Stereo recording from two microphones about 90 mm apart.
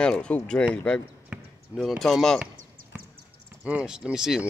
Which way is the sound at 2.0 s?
5° left (ahead or behind).